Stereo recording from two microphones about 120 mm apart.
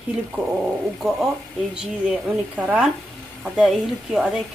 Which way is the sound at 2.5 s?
10° right (ahead or behind).